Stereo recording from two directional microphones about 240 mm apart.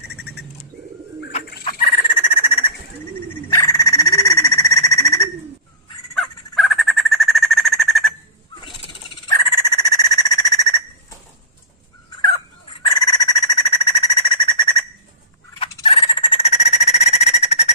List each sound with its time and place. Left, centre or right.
0.1 s bird: left
1.6 s bird: left
3.4 s frog: centre
6.1 s a sound: centre
9.3 s whistle: centre
12.2 s a sound: centre